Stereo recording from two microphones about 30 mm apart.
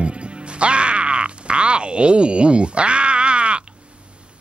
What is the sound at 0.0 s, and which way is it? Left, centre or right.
Music, right.